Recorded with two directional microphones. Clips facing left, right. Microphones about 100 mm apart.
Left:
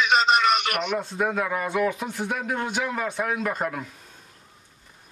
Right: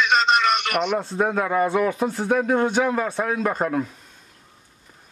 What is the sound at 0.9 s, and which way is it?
Speech, 35° right (ahead or behind).